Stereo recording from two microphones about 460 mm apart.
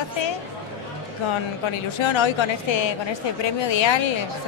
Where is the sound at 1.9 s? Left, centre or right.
Left.